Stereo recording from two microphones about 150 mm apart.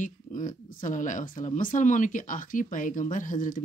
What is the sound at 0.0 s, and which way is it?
Speech, 60° left (ahead or behind).